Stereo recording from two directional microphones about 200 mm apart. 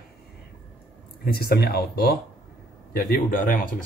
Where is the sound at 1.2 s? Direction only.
50° left (ahead or behind).